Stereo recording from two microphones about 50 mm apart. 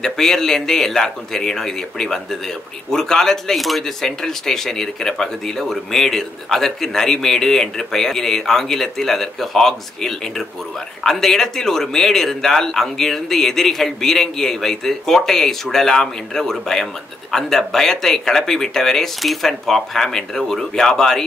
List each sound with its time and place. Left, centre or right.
0.0 s speech: centre